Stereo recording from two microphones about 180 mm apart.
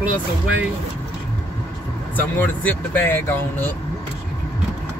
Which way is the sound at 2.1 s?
10° left (ahead or behind).